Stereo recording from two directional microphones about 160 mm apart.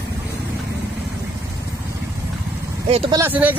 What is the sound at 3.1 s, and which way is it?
Speech, 10° right (ahead or behind).